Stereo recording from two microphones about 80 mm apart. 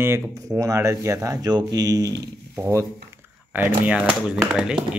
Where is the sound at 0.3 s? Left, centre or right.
Right.